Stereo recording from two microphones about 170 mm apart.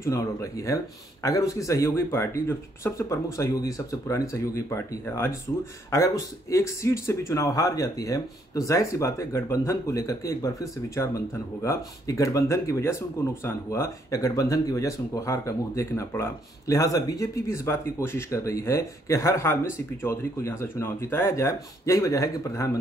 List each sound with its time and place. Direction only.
0.0 s speech: 20° left (ahead or behind)
6.5 s speech: 15° left (ahead or behind)